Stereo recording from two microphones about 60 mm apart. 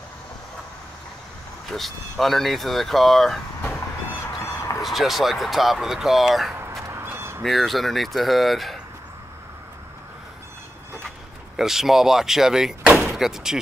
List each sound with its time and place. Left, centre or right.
1.7 s speech: centre
4.4 s fowl: left
4.8 s speech: centre
6.9 s a sound: right
7.4 s speech: centre
11.5 s speech: centre